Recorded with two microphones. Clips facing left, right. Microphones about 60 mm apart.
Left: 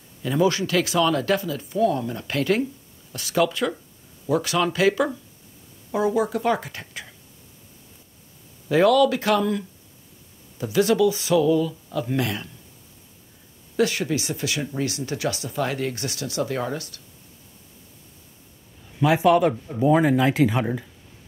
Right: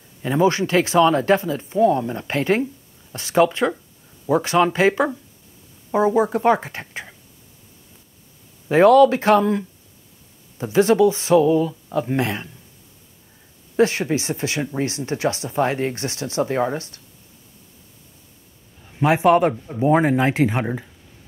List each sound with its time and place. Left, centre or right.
0.2 s speech: right
8.6 s speech: right
13.7 s speech: right
18.9 s speech: right